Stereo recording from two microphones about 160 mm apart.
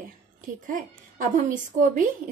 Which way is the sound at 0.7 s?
55° right (ahead or behind).